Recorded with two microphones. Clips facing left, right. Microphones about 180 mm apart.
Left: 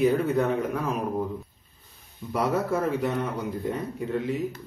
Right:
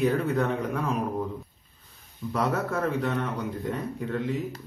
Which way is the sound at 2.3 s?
10° left (ahead or behind).